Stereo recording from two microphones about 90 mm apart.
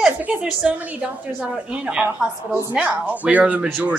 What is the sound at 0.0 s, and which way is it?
A woman's voice, 15° right (ahead or behind).